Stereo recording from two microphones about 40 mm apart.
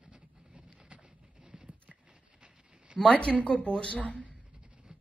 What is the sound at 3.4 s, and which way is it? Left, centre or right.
Speech, left.